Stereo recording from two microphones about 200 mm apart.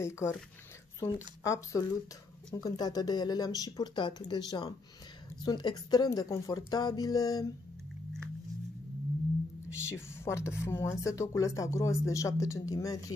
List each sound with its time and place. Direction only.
0.0 s speech: 15° left (ahead or behind)
9.8 s speech: 10° left (ahead or behind)